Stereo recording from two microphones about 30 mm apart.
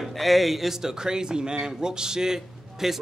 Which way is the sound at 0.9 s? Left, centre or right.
Right.